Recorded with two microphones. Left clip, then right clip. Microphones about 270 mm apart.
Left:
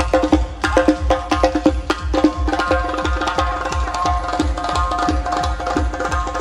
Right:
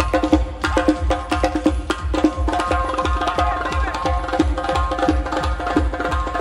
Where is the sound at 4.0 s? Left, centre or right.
Centre.